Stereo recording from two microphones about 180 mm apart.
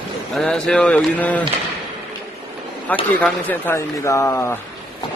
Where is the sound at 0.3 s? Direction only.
5° left (ahead or behind).